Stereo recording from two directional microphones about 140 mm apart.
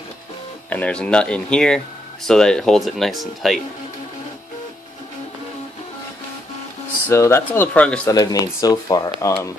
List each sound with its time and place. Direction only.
0.7 s speech: 10° left (ahead or behind)
7.1 s speech: 20° left (ahead or behind)
8.1 s speech: 25° left (ahead or behind)